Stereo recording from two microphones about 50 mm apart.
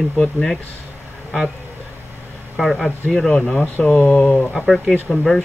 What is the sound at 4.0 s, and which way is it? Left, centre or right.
Speech, left.